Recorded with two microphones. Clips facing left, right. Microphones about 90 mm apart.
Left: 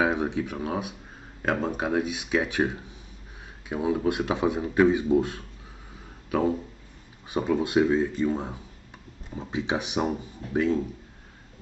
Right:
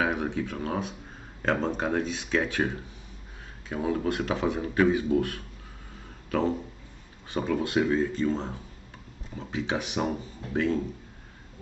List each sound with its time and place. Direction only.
0.0 s speech: 20° left (ahead or behind)